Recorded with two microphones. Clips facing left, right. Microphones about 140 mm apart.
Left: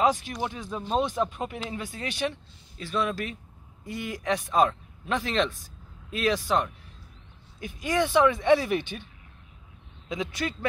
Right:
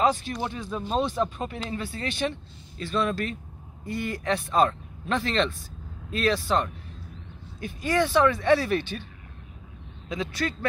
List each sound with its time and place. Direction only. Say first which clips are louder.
0.0 s speech: even; 10° left (ahead or behind)